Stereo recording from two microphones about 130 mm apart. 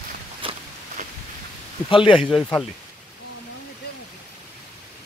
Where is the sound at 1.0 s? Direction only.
70° right (ahead or behind).